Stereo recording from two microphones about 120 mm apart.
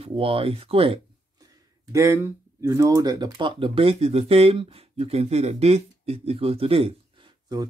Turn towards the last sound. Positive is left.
turn(degrees=-35)  # may be behind; listen again after turning